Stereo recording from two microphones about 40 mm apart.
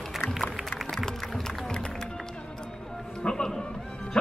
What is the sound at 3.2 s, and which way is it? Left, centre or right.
Music, centre.